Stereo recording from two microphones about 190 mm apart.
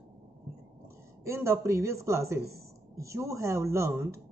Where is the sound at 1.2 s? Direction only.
15° right (ahead or behind).